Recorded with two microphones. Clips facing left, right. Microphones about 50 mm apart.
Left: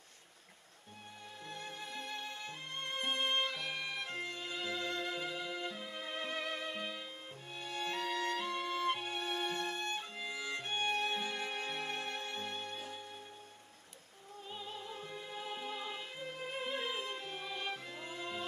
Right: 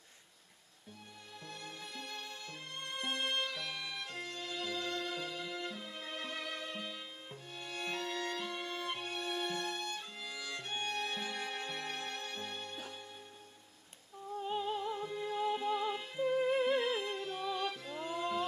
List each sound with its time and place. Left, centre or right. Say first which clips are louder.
1.5 s music: left 2 dB; left
8.3 s violin: left 3 dB; centre
14.5 s music: right 9 dB; right
15.0 s music: right 9 dB; centre
16.5 s music: right 8 dB; right
17.1 s music: right 5 dB; left